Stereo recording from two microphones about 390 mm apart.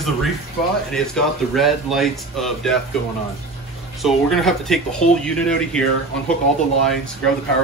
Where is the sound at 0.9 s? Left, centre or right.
Centre.